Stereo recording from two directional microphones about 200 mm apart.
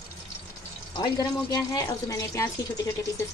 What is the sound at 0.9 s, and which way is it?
Speech, 20° left (ahead or behind).